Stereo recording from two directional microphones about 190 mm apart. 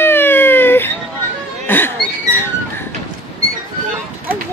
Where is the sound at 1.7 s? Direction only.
10° left (ahead or behind).